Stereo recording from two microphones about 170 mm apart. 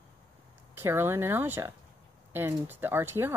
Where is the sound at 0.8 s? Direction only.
15° right (ahead or behind).